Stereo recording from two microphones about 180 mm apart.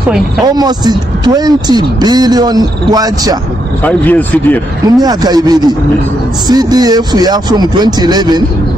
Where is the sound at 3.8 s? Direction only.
10° left (ahead or behind).